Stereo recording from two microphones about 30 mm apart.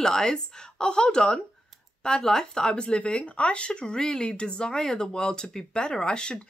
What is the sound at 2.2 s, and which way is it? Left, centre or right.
Speech, left.